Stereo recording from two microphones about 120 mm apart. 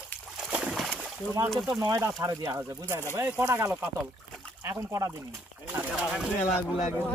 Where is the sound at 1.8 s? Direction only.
30° right (ahead or behind).